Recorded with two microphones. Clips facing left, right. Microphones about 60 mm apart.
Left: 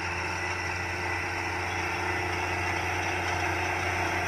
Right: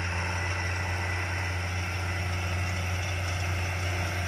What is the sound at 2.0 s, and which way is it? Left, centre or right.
Vehicle, left.